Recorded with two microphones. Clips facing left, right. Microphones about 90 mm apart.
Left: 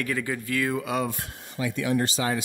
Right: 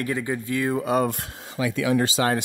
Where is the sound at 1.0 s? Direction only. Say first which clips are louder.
Right 5 dB; 80° right.